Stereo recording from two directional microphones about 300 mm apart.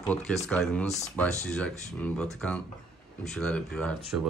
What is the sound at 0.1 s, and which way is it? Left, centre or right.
Speech, centre.